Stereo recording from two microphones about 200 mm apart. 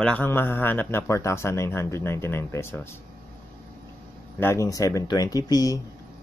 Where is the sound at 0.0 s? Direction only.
10° left (ahead or behind).